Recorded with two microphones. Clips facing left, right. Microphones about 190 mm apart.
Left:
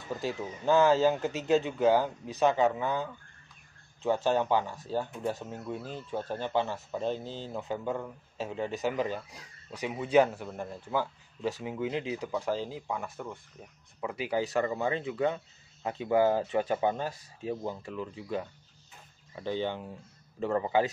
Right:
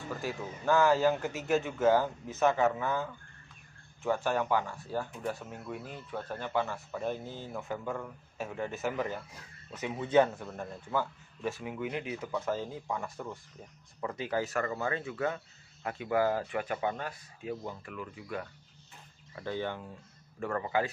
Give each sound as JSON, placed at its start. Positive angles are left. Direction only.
{"t": 0.2, "sound": "speech", "side_deg": 20}
{"t": 11.6, "sound": "speech", "side_deg": 25}